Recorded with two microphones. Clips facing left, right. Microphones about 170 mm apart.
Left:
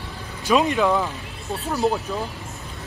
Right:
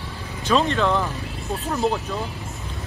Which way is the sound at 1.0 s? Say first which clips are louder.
Right 1 dB; centre (ahead or behind).